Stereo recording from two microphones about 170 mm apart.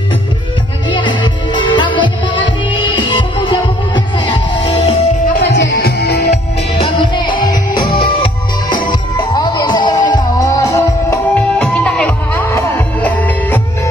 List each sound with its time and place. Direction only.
0.8 s music: 30° left (ahead or behind)
5.4 s music: 90° left; by 6.3 s 75° left (ahead or behind)
6.8 s music: 30° left (ahead or behind); by 13.6 s 10° left (ahead or behind)